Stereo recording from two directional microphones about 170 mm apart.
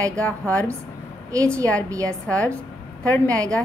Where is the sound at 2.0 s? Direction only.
10° left (ahead or behind).